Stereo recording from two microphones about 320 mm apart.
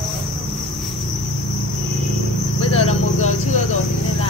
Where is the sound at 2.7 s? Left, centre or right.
Left.